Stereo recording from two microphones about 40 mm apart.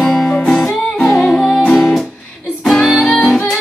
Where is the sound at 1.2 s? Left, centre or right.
Left.